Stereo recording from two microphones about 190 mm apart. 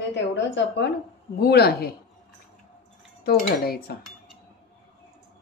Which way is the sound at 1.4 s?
55° left (ahead or behind).